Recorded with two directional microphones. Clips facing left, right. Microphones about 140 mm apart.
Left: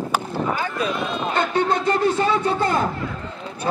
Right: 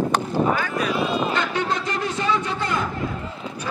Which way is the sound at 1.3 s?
30° left (ahead or behind).